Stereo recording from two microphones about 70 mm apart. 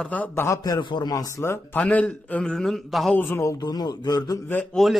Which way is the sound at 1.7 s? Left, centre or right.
Left.